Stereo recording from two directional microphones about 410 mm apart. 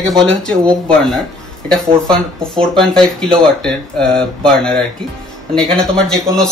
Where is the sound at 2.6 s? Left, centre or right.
Centre.